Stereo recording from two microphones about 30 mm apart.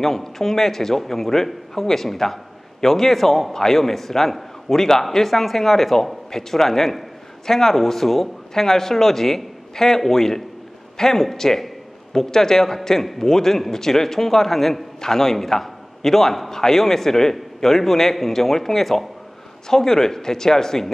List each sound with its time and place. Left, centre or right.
0.0 s a man's voice: centre
15.0 s a man's voice: centre